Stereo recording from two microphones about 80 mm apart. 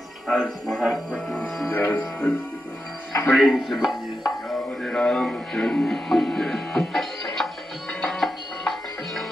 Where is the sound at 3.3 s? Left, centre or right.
Centre.